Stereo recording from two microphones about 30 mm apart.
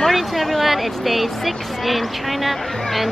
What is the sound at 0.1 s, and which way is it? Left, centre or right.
Speech, centre.